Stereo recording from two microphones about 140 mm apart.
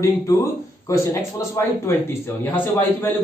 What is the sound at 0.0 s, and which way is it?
A man's voice, 20° left (ahead or behind).